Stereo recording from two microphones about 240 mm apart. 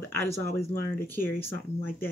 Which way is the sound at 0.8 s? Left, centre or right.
Centre.